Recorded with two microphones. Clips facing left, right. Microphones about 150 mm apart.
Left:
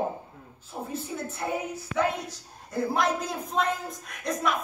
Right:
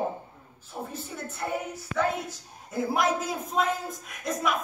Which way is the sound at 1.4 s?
5° left (ahead or behind).